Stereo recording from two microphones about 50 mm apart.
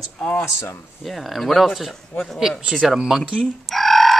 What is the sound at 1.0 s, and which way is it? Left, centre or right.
Speech, centre.